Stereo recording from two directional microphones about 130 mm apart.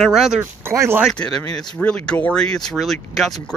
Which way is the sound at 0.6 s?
20° right (ahead or behind).